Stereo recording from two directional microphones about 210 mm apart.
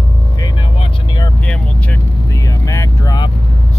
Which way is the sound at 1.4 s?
5° left (ahead or behind).